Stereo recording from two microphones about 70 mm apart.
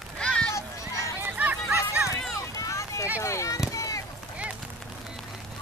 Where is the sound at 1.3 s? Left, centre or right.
Right.